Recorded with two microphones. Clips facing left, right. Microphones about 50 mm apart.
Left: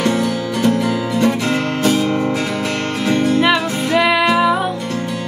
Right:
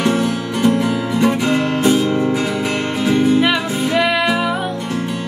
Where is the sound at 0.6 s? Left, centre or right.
Centre.